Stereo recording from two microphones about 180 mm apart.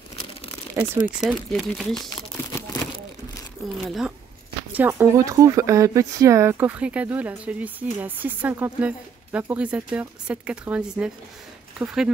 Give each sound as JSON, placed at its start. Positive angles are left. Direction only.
{"t": 0.8, "sound": "speech", "side_deg": -15}
{"t": 1.2, "sound": "speech", "side_deg": 0}
{"t": 2.0, "sound": "a sound", "side_deg": 20}
{"t": 3.8, "sound": "speech", "side_deg": 0}